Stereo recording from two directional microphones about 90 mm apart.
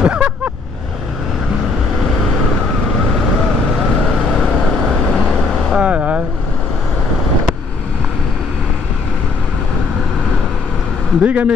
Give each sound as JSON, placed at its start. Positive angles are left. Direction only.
{"t": 0.0, "sound": "vehicle", "side_deg": -10}
{"t": 4.3, "sound": "vehicle", "side_deg": 0}
{"t": 5.8, "sound": "vehicle", "side_deg": -15}
{"t": 11.2, "sound": "speech", "side_deg": -15}